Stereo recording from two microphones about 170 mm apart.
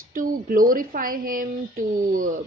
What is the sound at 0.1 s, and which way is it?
A woman's voice, 55° right (ahead or behind).